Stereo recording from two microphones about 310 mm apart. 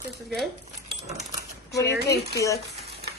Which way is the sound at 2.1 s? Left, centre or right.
Centre.